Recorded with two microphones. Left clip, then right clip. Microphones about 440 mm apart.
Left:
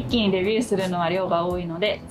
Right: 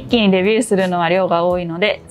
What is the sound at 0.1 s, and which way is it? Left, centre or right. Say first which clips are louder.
Speech: right 8 dB; right.